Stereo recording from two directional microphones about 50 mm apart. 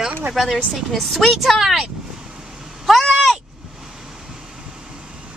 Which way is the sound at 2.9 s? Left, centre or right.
Centre.